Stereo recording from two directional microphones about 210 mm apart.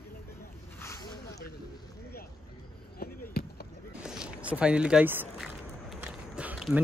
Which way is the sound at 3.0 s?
45° left (ahead or behind).